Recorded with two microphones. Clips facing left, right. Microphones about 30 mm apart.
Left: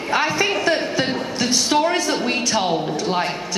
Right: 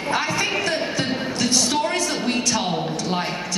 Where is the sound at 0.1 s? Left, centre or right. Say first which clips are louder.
Left 4 dB; centre.